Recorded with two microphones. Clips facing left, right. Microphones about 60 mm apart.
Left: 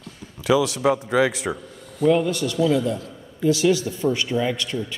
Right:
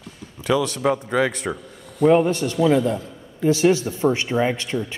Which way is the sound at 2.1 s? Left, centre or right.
Right.